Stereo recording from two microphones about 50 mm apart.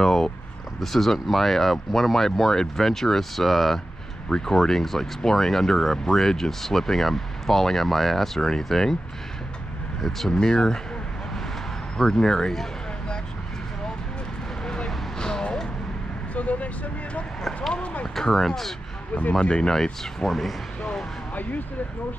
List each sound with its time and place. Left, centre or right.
0.0 s vehicle: centre
0.7 s speech: centre
10.0 s speech: centre
12.0 s speech: centre
15.1 s vehicle: centre
16.3 s vehicle: left
18.0 s speech: centre
19.4 s speech: centre
19.7 s speech: centre
21.4 s speech: left